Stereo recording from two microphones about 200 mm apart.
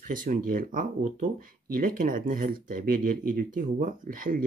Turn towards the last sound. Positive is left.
turn(degrees=-45)  # may be behind; listen again after turning